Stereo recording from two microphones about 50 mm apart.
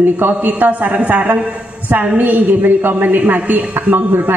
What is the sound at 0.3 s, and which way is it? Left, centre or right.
A man's voice, right.